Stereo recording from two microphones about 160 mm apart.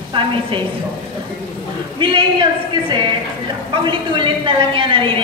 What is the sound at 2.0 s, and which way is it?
A woman's voice, 30° right (ahead or behind).